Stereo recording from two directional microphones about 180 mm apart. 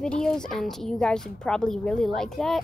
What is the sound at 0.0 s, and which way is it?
A woman's voice, 5° left (ahead or behind).